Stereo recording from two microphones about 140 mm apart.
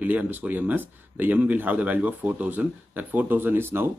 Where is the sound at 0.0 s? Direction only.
10° right (ahead or behind).